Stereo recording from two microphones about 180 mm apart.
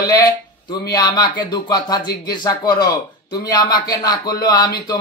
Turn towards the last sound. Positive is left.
turn(degrees=20)  # may be behind; listen again after turning